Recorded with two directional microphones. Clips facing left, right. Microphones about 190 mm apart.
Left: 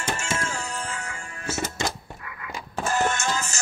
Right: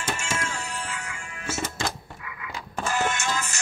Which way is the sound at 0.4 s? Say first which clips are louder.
Left 2 dB; 35° left (ahead or behind).